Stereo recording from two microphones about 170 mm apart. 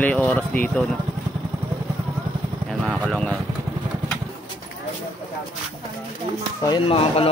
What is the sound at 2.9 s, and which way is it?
Vehicle, 5° left (ahead or behind).